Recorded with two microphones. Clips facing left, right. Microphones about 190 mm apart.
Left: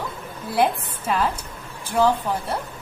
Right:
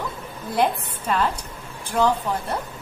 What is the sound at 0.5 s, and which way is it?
Speech, 5° left (ahead or behind).